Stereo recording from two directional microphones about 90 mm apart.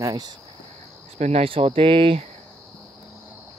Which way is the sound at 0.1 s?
50° right (ahead or behind).